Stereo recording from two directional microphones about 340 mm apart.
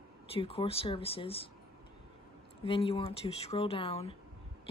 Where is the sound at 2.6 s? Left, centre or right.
Centre.